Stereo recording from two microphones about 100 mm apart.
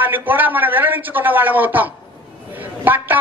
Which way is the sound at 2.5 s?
20° right (ahead or behind).